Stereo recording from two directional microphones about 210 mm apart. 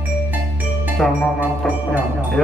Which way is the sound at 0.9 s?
Centre (ahead or behind).